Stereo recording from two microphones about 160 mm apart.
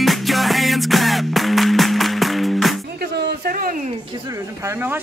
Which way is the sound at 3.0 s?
80° right.